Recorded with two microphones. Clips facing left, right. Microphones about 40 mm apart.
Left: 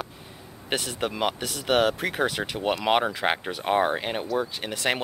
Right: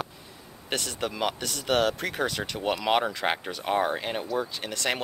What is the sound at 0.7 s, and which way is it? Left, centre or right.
Speech, centre.